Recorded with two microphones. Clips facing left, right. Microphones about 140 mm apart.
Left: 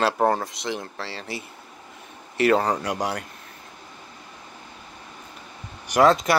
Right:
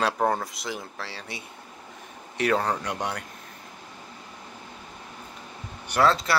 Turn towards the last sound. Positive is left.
turn(degrees=15)  # may be behind; listen again after turning